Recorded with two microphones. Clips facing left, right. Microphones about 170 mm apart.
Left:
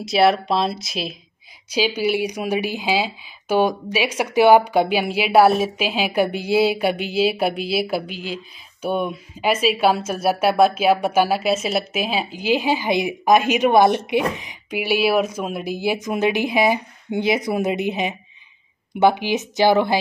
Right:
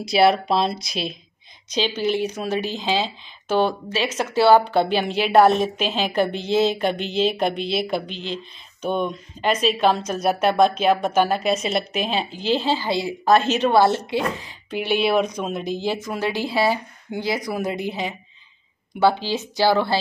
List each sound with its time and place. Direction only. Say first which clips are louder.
0.0 s speech: even; centre (ahead or behind); by 20.0 s 20° left (ahead or behind)